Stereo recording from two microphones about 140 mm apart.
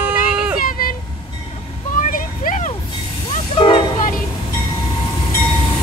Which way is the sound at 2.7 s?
35° left (ahead or behind).